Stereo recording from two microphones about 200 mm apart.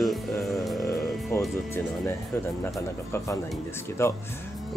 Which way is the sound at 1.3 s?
10° left (ahead or behind).